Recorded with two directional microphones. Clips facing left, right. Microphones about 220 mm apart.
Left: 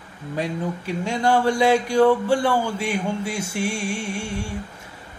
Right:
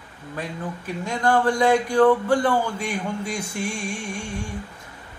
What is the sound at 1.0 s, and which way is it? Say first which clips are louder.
A man's voice: left 1 dB; 10° left (ahead or behind).